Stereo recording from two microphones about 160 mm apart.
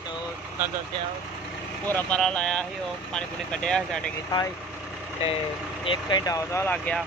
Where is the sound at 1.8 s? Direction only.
10° left (ahead or behind).